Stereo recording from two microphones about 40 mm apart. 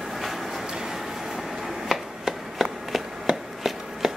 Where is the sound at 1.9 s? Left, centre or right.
Centre.